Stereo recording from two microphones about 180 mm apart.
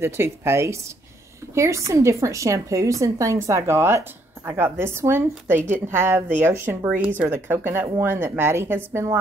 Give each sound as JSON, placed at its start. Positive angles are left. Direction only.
{"t": 0.0, "sound": "a woman's voice", "side_deg": -15}